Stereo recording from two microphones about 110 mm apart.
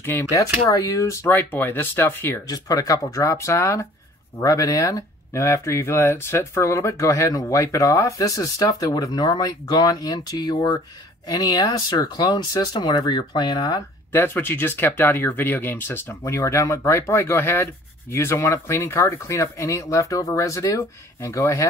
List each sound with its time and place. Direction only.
0.0 s speech: 20° left (ahead or behind)
2.4 s speech: 35° left (ahead or behind)
14.1 s speech: 20° left (ahead or behind)